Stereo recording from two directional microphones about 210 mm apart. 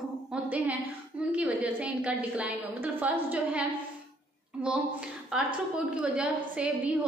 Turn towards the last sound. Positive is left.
turn(degrees=-5)  # may be behind; listen again after turning